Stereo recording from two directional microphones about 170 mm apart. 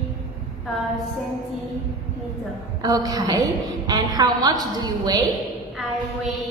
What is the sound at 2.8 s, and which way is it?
A woman's voice, 25° right (ahead or behind).